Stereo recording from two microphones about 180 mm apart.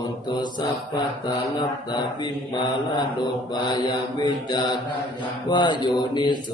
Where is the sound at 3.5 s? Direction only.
25° left (ahead or behind).